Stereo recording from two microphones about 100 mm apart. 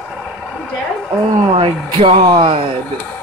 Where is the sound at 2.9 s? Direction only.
15° left (ahead or behind).